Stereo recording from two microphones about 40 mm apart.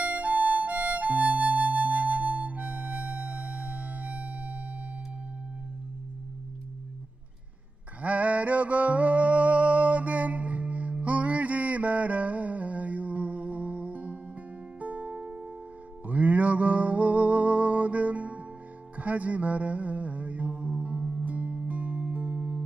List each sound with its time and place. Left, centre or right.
0.0 s music: right
8.0 s music: right